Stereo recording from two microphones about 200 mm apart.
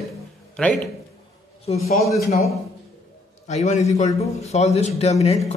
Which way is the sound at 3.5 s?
35° left (ahead or behind).